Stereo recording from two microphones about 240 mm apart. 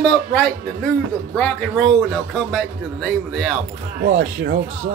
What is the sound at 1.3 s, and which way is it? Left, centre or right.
A man's voice, centre.